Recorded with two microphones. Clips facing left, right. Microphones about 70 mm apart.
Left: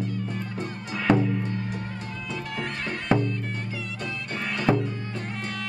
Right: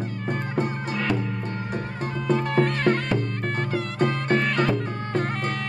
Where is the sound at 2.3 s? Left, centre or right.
Right.